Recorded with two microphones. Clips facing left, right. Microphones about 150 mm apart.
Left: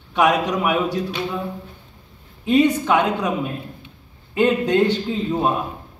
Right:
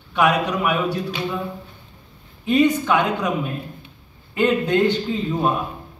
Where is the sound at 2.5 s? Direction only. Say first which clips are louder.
Left 1 dB; 25° left (ahead or behind).